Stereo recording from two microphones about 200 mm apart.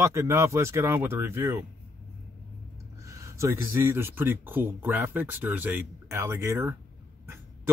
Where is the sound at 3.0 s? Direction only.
15° right (ahead or behind).